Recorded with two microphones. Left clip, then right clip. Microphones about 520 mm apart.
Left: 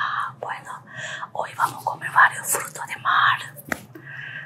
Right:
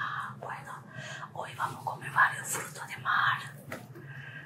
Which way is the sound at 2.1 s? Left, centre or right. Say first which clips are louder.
Left 9 dB; left.